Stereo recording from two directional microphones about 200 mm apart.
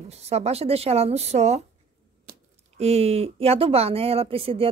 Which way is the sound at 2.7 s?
30° right (ahead or behind).